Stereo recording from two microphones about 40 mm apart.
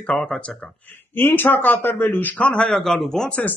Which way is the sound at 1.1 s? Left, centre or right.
Left.